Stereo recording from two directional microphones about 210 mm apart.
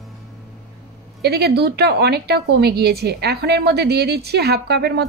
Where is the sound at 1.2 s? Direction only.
50° right (ahead or behind).